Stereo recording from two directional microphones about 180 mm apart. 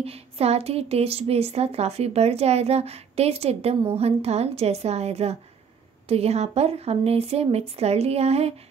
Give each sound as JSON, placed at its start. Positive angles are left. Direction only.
{"t": 0.0, "sound": "a woman's voice", "side_deg": -35}